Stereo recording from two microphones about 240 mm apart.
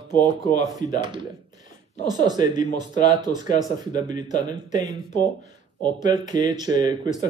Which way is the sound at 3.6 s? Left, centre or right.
Centre.